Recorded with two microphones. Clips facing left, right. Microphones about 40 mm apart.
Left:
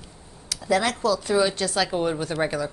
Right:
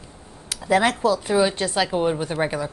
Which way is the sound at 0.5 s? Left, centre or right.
Right.